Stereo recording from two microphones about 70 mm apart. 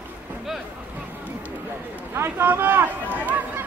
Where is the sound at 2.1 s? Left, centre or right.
Right.